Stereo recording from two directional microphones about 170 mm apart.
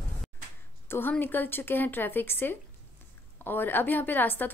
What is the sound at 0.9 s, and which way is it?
A woman's voice, 10° left (ahead or behind).